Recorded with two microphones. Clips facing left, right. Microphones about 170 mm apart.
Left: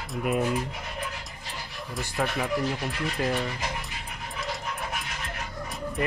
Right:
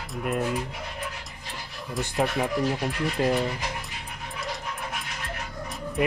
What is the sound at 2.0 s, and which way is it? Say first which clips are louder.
Speech: right 3 dB; 20° right (ahead or behind).